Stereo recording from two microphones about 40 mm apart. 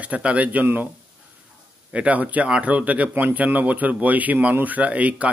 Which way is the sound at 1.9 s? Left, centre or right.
Right.